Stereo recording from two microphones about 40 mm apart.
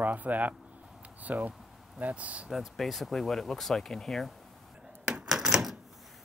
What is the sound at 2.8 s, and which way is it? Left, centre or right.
Speech, centre.